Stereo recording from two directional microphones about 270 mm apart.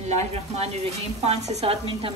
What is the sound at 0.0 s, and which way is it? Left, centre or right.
Speech, right.